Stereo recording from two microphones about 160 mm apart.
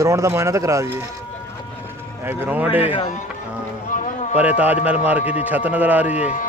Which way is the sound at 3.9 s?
55° left (ahead or behind).